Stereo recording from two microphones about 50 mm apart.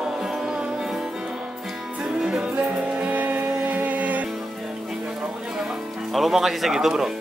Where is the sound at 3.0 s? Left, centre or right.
Right.